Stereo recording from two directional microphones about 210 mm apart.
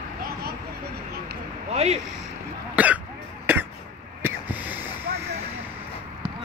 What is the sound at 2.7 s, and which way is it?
Speech, 5° right (ahead or behind).